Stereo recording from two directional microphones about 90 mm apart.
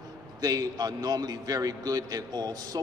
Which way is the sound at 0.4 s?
45° right (ahead or behind).